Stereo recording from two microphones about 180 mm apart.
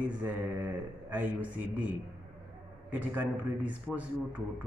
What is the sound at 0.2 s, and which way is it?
Speech, 10° right (ahead or behind).